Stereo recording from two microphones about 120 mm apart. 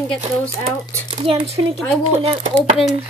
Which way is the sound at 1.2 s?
45° right (ahead or behind).